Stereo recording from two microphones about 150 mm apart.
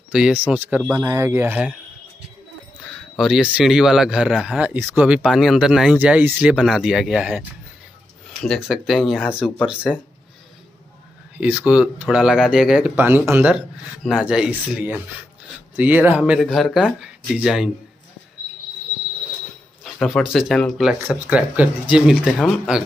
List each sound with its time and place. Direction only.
0.1 s speech: 5° right (ahead or behind)
3.2 s speech: 5° right (ahead or behind)
11.3 s speech: 10° right (ahead or behind)
19.8 s a sound: centre (ahead or behind)
20.3 s speech: centre (ahead or behind)